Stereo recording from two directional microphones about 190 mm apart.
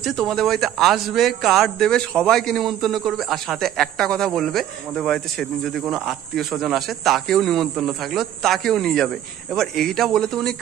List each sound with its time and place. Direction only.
0.0 s speech: centre (ahead or behind)